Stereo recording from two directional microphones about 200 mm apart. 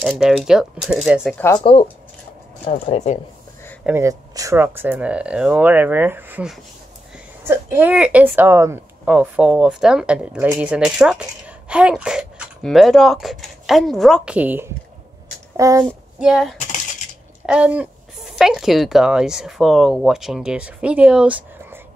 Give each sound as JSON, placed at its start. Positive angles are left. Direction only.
{"t": 0.0, "sound": "a woman's voice", "side_deg": -5}
{"t": 1.3, "sound": "speech", "side_deg": 10}
{"t": 1.6, "sound": "speech", "side_deg": 25}
{"t": 3.8, "sound": "a woman's voice", "side_deg": -15}
{"t": 16.2, "sound": "a woman's voice", "side_deg": -5}